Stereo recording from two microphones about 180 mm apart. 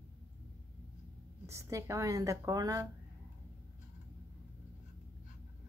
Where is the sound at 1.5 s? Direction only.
15° right (ahead or behind).